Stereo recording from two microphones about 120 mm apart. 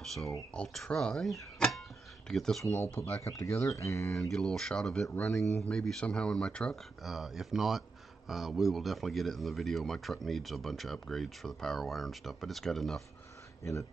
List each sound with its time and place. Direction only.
0.0 s speech: centre (ahead or behind)
2.6 s speech: 20° left (ahead or behind)
4.1 s speech: 5° left (ahead or behind)